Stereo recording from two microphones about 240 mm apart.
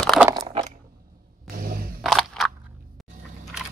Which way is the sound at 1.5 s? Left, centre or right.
Right.